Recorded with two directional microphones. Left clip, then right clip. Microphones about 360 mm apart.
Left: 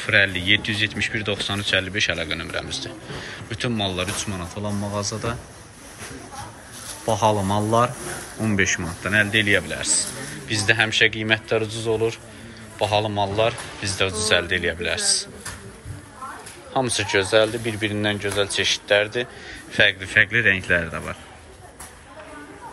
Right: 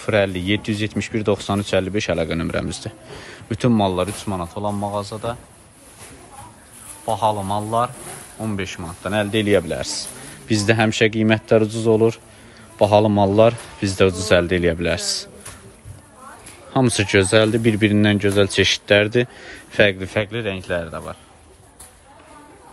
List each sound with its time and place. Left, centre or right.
0.0 s speech: centre
7.1 s a man's voice: centre
16.7 s speech: right; by 21.2 s centre